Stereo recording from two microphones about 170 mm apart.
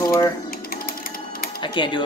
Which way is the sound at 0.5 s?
60° left (ahead or behind).